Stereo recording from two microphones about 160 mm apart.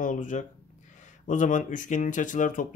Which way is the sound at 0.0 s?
55° left (ahead or behind).